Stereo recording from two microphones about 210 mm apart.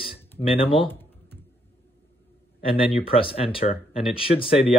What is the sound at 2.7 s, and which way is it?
Speech, 25° left (ahead or behind).